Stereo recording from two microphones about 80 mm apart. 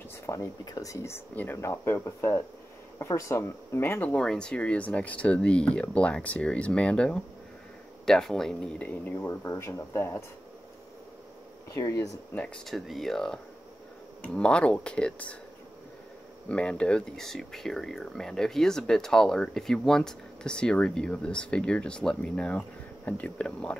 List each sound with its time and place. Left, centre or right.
0.3 s speech: left
1.3 s speech: left
1.6 s speech: left
4.1 s speech: centre
8.8 s speech: left
9.4 s speech: left
11.7 s speech: left
12.6 s speech: centre
16.4 s speech: centre